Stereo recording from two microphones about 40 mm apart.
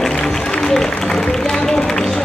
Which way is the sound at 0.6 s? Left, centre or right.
Centre.